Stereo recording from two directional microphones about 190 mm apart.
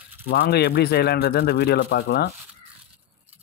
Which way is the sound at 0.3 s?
55° left (ahead or behind).